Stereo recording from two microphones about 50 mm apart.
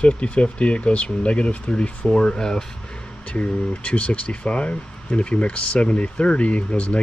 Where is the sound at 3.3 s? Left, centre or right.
Left.